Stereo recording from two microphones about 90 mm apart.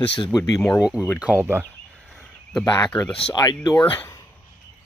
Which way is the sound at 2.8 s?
15° left (ahead or behind).